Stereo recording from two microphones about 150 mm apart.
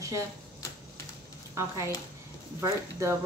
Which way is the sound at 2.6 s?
20° right (ahead or behind).